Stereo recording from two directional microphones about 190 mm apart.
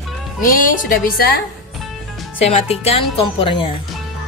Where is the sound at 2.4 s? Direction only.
35° left (ahead or behind).